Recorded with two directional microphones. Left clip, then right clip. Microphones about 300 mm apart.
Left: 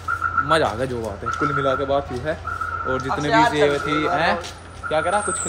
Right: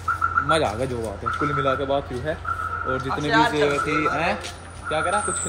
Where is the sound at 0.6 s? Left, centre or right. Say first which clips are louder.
Left 2 dB; left.